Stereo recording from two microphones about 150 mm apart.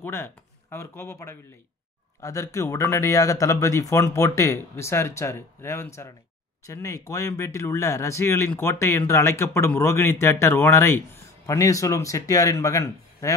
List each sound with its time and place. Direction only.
0.0 s speech: 15° left (ahead or behind)